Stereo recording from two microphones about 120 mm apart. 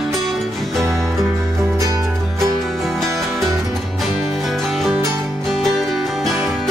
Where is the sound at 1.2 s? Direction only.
25° right (ahead or behind).